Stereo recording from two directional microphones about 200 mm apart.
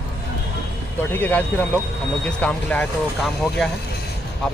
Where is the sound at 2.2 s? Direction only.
5° left (ahead or behind).